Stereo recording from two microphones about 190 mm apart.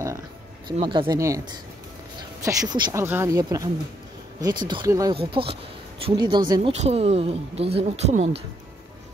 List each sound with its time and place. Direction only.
0.7 s speech: 25° right (ahead or behind)
5.1 s speech: 30° right (ahead or behind)
6.7 s speech: 35° right (ahead or behind)